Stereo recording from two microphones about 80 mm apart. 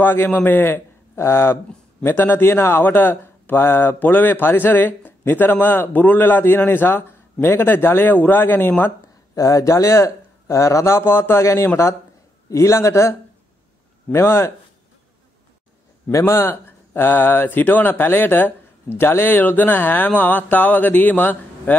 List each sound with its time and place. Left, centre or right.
0.0 s a man's voice: left
9.3 s speech: left
14.1 s speech: left
16.1 s speech: left